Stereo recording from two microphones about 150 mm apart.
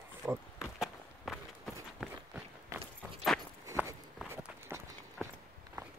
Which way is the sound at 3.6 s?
15° right (ahead or behind).